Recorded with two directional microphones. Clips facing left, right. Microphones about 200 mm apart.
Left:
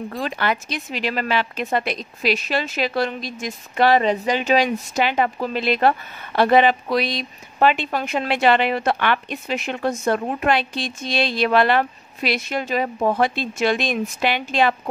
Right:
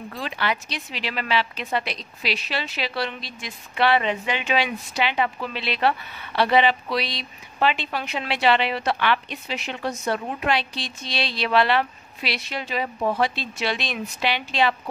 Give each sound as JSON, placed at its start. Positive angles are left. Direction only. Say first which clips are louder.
{"t": 0.1, "sound": "speech", "louder": "left 2 dB", "side_deg": 45}